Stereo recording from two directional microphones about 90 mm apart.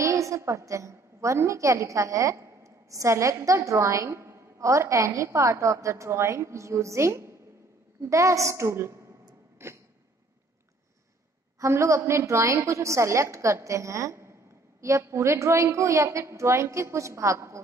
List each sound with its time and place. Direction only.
0.0 s a woman's voice: 35° right (ahead or behind)
9.6 s a sound: 30° right (ahead or behind)
11.6 s a woman's voice: 35° right (ahead or behind)